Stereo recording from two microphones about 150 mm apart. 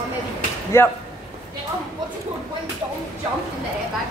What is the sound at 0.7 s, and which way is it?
Speech, 15° left (ahead or behind).